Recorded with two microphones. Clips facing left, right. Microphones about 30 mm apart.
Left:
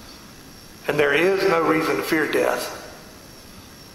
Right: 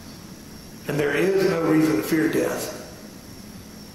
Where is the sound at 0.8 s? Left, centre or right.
Left.